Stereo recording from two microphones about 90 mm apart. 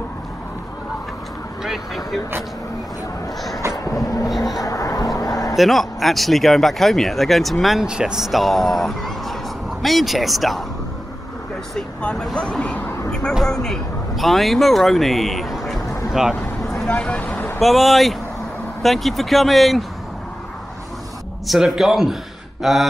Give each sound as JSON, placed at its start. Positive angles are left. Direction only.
{"t": 1.6, "sound": "vehicle", "side_deg": 0}
{"t": 3.7, "sound": "vehicle", "side_deg": 40}
{"t": 4.6, "sound": "a sound", "side_deg": 40}
{"t": 5.6, "sound": "speech", "side_deg": 0}
{"t": 11.7, "sound": "speech", "side_deg": 10}
{"t": 13.3, "sound": "a man's voice", "side_deg": 5}
{"t": 16.8, "sound": "speech", "side_deg": 10}
{"t": 21.5, "sound": "speech", "side_deg": 0}